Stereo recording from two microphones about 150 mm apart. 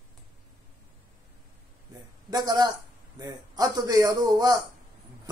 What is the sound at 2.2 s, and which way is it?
A man's voice, 25° right (ahead or behind).